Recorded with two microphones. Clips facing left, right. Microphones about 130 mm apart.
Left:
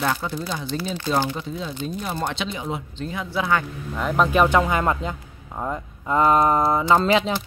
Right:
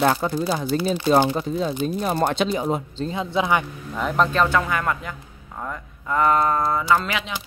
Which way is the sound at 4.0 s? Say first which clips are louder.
Even; centre (ahead or behind).